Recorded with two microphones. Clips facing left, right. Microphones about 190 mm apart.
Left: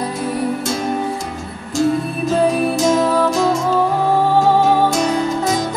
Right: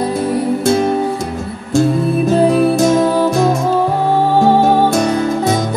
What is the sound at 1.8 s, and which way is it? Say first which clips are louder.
Music: right 4 dB; 60° right (ahead or behind).